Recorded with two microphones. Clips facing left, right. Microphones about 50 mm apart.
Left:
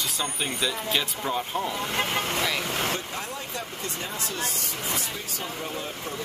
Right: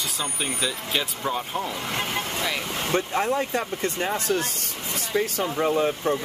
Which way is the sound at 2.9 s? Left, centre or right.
Right.